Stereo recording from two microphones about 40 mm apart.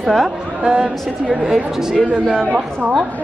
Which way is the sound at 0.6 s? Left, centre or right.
Right.